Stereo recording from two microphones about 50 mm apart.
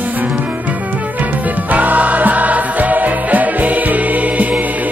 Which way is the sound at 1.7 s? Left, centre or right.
Right.